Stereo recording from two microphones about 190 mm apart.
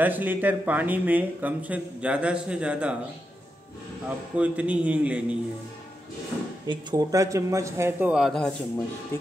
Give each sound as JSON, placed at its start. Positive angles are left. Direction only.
{"t": 0.0, "sound": "speech", "side_deg": -10}
{"t": 4.4, "sound": "speech", "side_deg": -5}
{"t": 6.7, "sound": "speech", "side_deg": -20}